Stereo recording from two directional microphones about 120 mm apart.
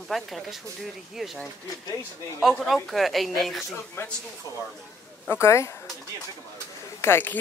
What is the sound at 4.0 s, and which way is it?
Speech, 20° left (ahead or behind).